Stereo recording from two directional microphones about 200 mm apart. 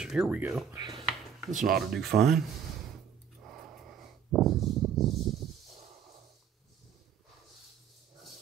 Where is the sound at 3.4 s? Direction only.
Centre (ahead or behind).